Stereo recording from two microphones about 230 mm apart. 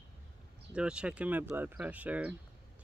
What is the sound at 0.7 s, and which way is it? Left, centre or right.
Speech, centre.